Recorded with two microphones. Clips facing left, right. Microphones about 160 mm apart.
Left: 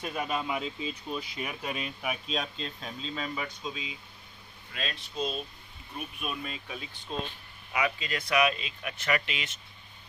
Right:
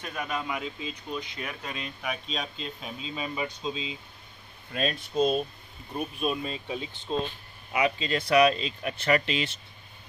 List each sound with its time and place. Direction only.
0.0 s speech: 10° left (ahead or behind); by 3.3 s 5° right (ahead or behind)
3.3 s speech: 25° right (ahead or behind)
4.7 s speech: 45° right (ahead or behind)
5.9 s speech: 30° right (ahead or behind)